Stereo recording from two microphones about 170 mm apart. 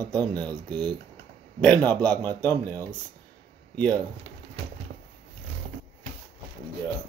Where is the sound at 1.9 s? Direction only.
25° right (ahead or behind).